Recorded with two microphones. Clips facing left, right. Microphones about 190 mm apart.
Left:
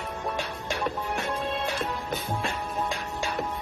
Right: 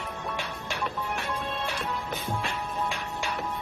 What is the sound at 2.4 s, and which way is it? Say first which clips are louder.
Music: left 1 dB; 40° left (ahead or behind).